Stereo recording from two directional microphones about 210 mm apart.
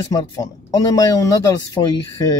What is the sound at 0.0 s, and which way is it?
Speech, 20° left (ahead or behind).